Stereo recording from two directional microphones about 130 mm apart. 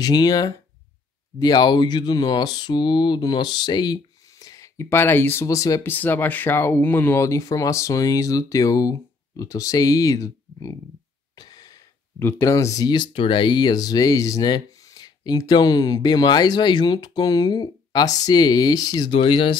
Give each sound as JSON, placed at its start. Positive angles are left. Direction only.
{"t": 0.0, "sound": "speech", "side_deg": 30}
{"t": 5.9, "sound": "speech", "side_deg": 15}
{"t": 11.3, "sound": "a sound", "side_deg": 30}
{"t": 12.2, "sound": "speech", "side_deg": 20}